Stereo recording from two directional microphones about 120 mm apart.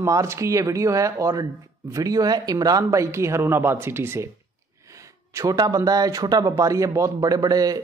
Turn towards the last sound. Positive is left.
turn(degrees=-30)  # may be behind; listen again after turning